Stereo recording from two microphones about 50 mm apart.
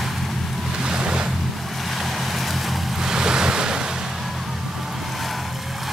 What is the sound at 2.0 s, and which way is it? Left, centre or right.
Vehicle, centre.